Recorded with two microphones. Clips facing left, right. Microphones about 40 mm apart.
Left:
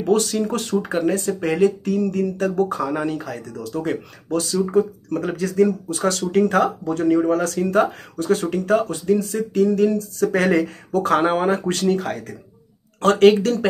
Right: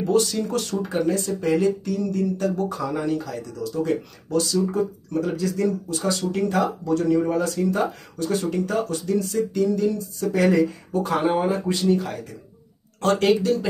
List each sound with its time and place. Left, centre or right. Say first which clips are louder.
0.0 s speech: left 2 dB; left
7.2 s speech: left 2 dB; left
13.4 s speech: left 2 dB; left